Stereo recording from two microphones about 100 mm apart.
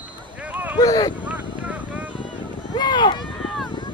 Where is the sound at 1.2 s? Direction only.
15° right (ahead or behind).